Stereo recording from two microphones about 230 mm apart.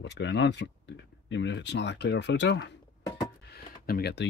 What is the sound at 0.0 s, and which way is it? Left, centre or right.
Speech, left.